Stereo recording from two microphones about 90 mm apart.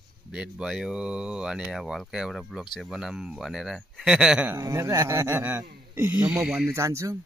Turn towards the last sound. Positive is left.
turn(degrees=-35)  # may be behind; listen again after turning